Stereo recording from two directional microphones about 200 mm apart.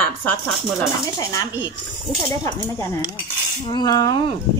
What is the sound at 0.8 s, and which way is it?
Speech, 15° left (ahead or behind).